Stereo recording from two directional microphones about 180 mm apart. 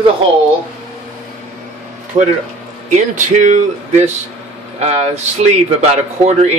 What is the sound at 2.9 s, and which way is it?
Speech, 45° right (ahead or behind).